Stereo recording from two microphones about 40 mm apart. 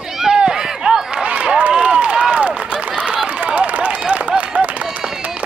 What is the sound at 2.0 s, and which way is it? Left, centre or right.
Run, right.